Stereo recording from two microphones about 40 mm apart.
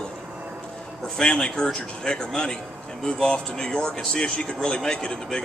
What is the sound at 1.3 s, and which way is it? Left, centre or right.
Speech, left.